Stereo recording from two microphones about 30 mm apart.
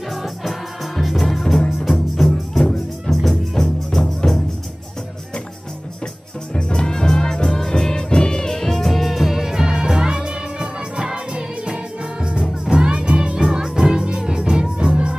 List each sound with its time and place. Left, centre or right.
0.1 s music: centre
1.5 s music: left
1.9 s music: centre
6.5 s music: left; by 13.4 s right
13.4 s music: right